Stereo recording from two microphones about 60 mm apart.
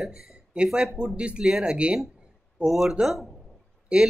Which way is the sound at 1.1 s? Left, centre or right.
Centre.